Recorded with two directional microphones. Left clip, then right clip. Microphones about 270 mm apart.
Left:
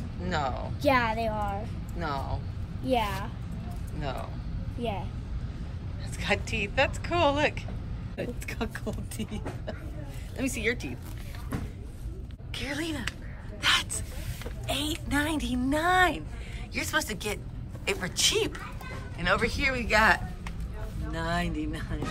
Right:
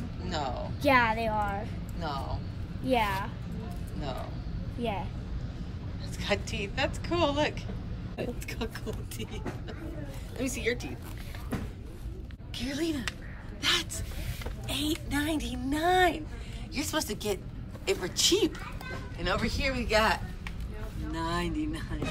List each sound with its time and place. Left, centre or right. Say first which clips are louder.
0.3 s a woman's voice: left 3 dB; centre
6.1 s a woman's voice: left 3 dB; centre
10.3 s a woman's voice: left 2 dB; centre
12.5 s a woman's voice: even; centre
16.7 s a woman's voice: left 3 dB; centre